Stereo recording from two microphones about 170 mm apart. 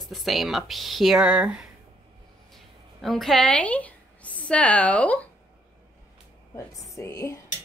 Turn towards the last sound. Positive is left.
turn(degrees=20)  # may be behind; listen again after turning